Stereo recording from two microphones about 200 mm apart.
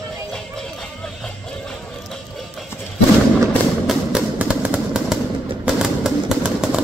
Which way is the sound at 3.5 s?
Centre (ahead or behind).